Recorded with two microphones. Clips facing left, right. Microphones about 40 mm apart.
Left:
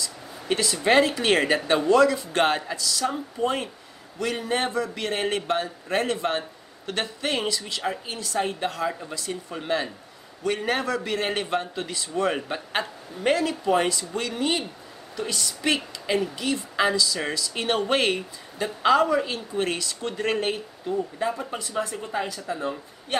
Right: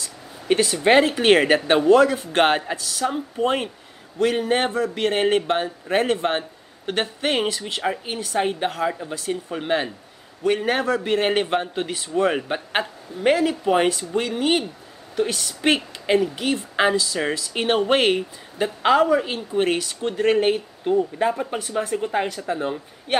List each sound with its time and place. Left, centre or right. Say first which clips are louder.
0.8 s a woman's voice: right 4 dB; right
9.1 s a woman's voice: right 5 dB; right
10.9 s a woman's voice: right 6 dB; right
15.1 s a woman's voice: right 6 dB; right
20.0 s speech: right 7 dB; centre
20.9 s speech: right 7 dB; right
21.3 s a woman's voice: right 5 dB; right